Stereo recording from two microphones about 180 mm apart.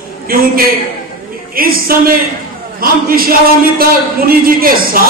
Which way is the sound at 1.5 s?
55° right (ahead or behind).